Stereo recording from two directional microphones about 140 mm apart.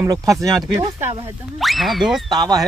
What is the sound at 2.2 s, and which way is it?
Speech, 30° right (ahead or behind).